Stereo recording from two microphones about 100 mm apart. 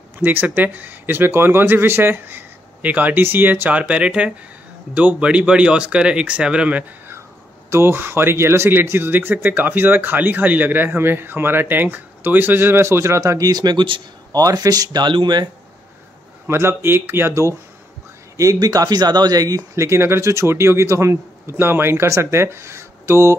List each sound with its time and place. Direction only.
0.2 s speech: 20° right (ahead or behind)
7.7 s speech: 20° right (ahead or behind); by 14.0 s 55° right (ahead or behind)
14.3 s speech: 40° right (ahead or behind)
16.4 s speech: 25° right (ahead or behind)